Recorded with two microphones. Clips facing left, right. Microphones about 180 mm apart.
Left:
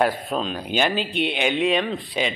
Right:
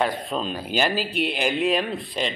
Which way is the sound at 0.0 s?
5° left (ahead or behind).